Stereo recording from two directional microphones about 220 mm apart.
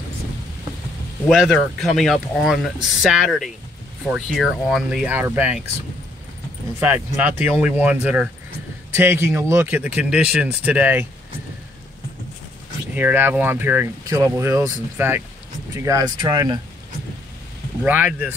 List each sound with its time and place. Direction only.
1.2 s speech: centre (ahead or behind)
6.8 s speech: 10° right (ahead or behind)
12.9 s speech: 10° right (ahead or behind)
17.8 s speech: 5° right (ahead or behind)